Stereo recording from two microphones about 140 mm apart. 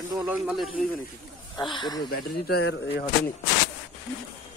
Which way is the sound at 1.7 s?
30° left (ahead or behind).